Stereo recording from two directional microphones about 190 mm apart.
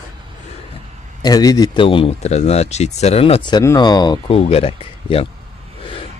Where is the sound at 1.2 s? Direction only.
20° left (ahead or behind).